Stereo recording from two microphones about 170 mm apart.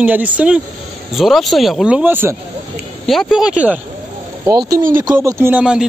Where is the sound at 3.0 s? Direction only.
Centre (ahead or behind).